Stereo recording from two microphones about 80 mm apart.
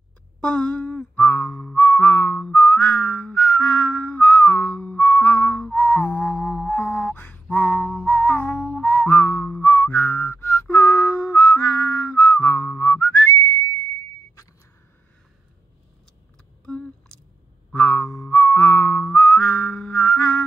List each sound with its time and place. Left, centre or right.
0.4 s a sound: centre
1.8 s whistling: centre
7.2 s music: centre
9.6 s whistling: left
16.6 s a sound: centre
17.7 s whistling: centre